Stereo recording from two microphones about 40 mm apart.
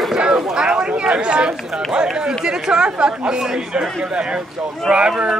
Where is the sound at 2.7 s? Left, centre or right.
Centre.